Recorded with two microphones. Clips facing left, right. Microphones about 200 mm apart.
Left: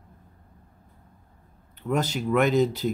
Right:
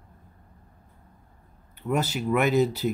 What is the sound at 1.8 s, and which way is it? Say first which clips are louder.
Speech: even; 5° right (ahead or behind).